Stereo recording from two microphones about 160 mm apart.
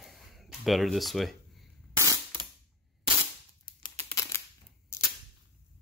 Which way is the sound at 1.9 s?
20° right (ahead or behind).